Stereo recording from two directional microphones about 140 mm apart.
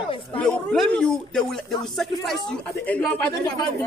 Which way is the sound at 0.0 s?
40° left (ahead or behind).